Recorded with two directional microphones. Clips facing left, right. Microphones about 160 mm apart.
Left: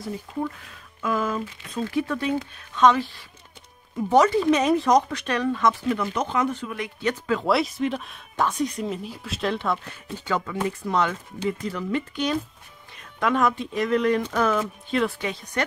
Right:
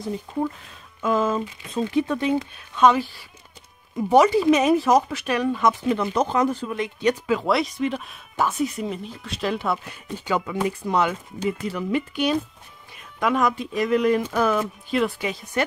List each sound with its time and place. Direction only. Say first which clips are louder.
1.0 s speech: right 4 dB; 25° right (ahead or behind)
5.9 s speech: right 3 dB; 35° right (ahead or behind)
7.1 s speech: right 3 dB; 10° right (ahead or behind)
7.4 s speech: left 2 dB; centre (ahead or behind)